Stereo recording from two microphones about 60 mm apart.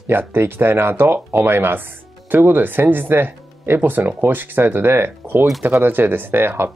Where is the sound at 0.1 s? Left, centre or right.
Right.